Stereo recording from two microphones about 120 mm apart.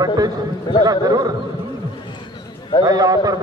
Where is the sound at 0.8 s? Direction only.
30° right (ahead or behind).